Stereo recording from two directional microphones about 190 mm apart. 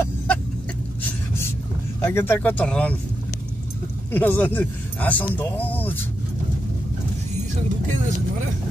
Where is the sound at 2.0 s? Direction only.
10° left (ahead or behind).